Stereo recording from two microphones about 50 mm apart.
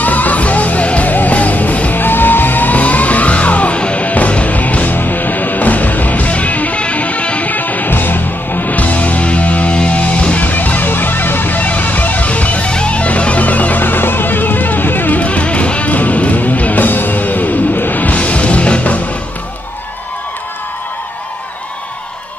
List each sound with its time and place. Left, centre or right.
0.0 s music: left